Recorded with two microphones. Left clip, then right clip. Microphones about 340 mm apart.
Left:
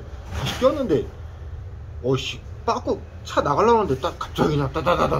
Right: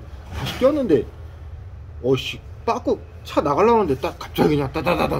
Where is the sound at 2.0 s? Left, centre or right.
Right.